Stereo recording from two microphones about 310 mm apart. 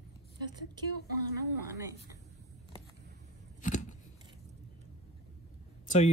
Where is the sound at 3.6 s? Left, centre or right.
Left.